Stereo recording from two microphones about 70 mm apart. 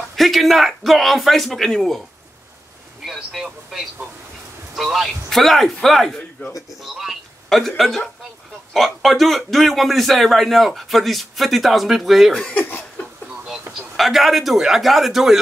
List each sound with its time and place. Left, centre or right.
0.1 s speech: centre
3.1 s speech: centre
6.4 s speech: left
6.8 s speech: centre
12.4 s speech: left
13.5 s a man's voice: centre